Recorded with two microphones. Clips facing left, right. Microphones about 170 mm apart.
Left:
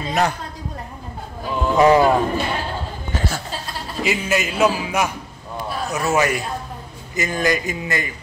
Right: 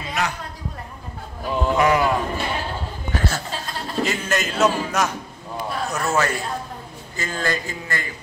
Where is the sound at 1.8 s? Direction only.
30° left (ahead or behind).